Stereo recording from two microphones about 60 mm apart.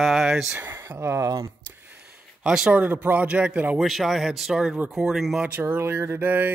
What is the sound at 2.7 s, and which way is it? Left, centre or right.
Speech, right.